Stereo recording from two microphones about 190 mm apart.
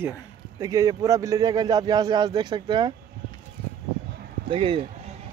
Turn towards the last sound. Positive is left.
turn(degrees=-30)  # may be behind; listen again after turning